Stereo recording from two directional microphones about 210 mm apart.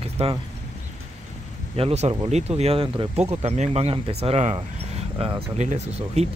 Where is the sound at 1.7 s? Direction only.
30° right (ahead or behind).